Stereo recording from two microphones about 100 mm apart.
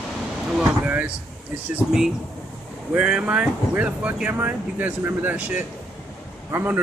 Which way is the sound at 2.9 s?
10° right (ahead or behind).